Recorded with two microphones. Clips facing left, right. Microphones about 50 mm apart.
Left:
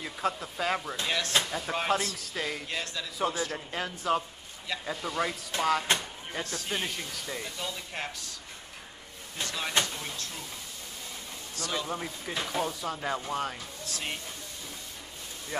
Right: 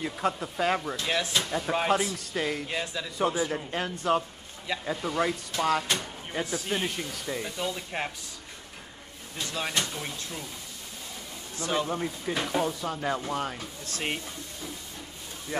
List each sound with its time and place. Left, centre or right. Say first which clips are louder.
0.0 s speech: right 3 dB; centre
3.9 s speech: right 2 dB; centre
9.5 s speech: right 3 dB; centre
11.5 s speech: right 5 dB; right
11.9 s speech: right 4 dB; centre
13.8 s speech: right 4 dB; right